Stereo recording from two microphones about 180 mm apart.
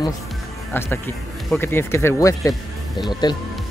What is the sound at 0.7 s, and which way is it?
Speech, 15° left (ahead or behind).